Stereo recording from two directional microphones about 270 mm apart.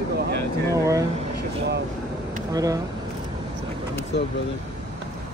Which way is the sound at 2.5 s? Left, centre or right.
Centre.